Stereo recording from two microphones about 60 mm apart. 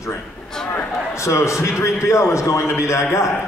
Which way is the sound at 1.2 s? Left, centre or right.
Left.